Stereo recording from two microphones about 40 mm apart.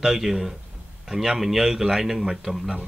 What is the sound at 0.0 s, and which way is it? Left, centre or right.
Speech, centre.